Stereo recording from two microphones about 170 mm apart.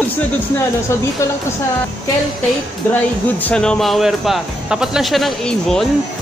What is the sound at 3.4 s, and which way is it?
Music, 5° left (ahead or behind).